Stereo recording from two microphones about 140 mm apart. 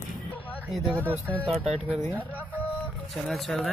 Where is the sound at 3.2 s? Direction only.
Centre (ahead or behind).